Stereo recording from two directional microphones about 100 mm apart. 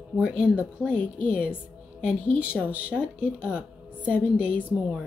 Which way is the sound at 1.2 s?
10° right (ahead or behind).